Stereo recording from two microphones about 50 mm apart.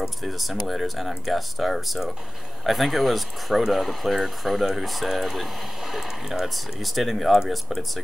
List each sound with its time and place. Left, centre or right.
0.2 s speech: centre